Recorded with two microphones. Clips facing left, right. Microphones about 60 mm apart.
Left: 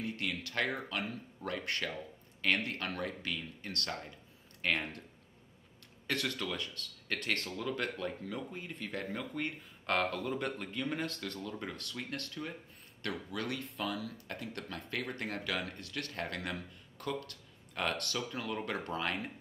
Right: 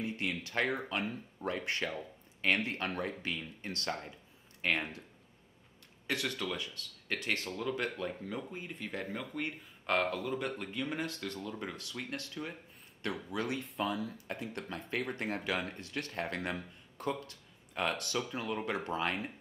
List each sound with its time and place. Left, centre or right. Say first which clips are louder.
0.0 s speech: right 1 dB; right
6.0 s speech: even; centre
8.0 s speech: even; centre
11.2 s speech: right 1 dB; centre
11.8 s speech: even; centre
13.0 s speech: right 2 dB; centre
17.3 s a sound: even; centre
18.1 s speech: right 2 dB; centre